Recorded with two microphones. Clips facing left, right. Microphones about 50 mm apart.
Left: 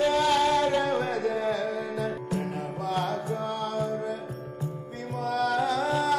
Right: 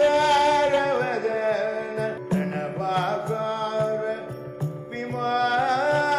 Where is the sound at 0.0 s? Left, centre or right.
Right.